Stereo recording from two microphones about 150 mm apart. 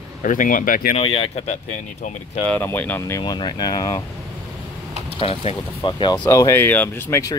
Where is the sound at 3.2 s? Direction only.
30° left (ahead or behind).